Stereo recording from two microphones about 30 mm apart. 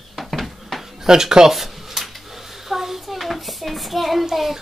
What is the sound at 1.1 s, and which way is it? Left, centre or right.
Speech, centre.